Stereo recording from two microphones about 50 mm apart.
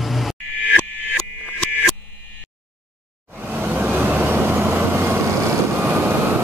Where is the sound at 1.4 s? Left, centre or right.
Left.